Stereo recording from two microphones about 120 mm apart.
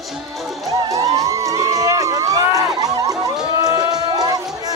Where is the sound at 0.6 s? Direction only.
30° right (ahead or behind).